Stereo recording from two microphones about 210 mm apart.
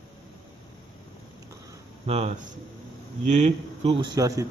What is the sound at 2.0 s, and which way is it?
Speech, 30° right (ahead or behind).